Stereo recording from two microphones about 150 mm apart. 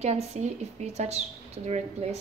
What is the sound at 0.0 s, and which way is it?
Speech, 45° right (ahead or behind).